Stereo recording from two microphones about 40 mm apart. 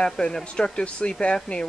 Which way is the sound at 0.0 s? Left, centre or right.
Centre.